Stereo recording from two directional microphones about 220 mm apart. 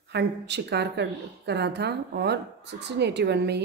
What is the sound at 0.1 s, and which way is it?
A woman's voice, 50° right (ahead or behind).